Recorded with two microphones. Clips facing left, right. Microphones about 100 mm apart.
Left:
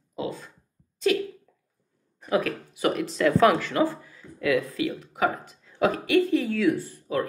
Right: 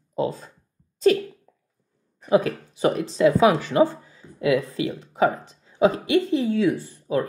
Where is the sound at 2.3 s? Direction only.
30° right (ahead or behind).